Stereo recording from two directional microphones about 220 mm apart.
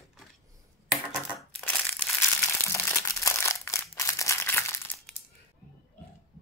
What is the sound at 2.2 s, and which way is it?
Crumpling, 10° left (ahead or behind).